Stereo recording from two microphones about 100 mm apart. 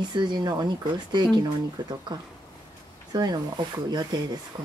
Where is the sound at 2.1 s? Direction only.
45° right (ahead or behind).